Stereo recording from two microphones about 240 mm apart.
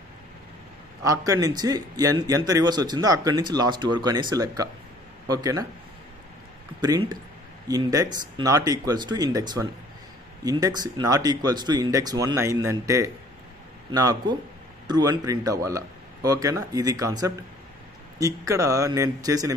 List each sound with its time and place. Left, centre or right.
1.0 s a man's voice: centre
6.8 s a man's voice: centre